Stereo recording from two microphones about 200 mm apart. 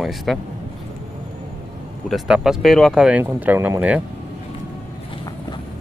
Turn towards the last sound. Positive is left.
turn(degrees=-10)  # may be behind; listen again after turning